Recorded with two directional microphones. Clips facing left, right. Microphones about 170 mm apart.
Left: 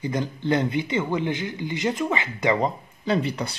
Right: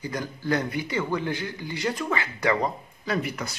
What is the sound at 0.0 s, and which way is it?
Speech, 25° left (ahead or behind).